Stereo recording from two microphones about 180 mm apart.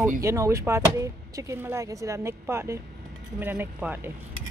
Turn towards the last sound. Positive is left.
turn(degrees=-10)  # may be behind; listen again after turning